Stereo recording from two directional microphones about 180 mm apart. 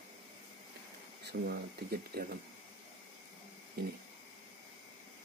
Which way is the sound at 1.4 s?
60° right (ahead or behind).